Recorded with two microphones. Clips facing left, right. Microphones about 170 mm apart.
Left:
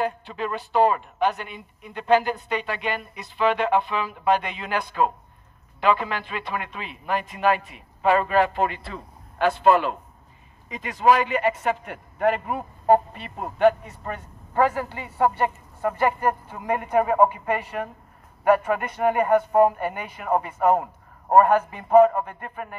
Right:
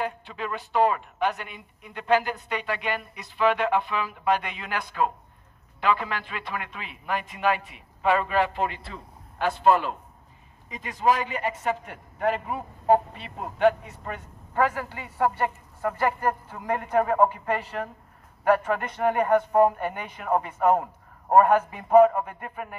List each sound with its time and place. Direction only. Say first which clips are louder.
0.0 s a man's voice: left 4 dB; 35° left (ahead or behind); by 22.8 s 5° right (ahead or behind)